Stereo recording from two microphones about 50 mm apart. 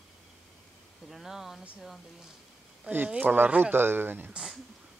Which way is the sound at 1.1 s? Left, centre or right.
Centre.